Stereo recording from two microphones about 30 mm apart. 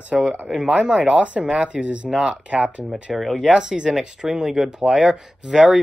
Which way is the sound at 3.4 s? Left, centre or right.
Right.